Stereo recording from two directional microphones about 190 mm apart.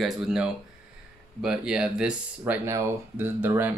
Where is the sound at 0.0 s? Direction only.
5° right (ahead or behind).